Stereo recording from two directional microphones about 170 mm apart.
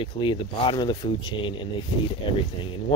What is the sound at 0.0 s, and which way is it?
Speech, 30° left (ahead or behind).